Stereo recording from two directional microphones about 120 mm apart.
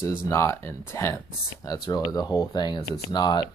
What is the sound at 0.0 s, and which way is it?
Speech, 25° left (ahead or behind).